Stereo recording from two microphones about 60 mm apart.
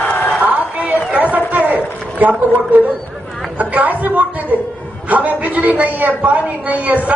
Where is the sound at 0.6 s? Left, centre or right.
Right.